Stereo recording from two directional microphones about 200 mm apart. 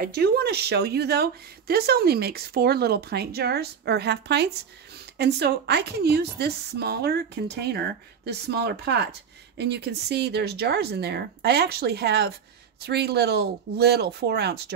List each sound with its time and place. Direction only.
0.0 s speech: 50° right (ahead or behind)